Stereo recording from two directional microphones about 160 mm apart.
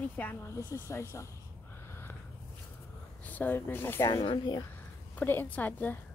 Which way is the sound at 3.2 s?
10° left (ahead or behind).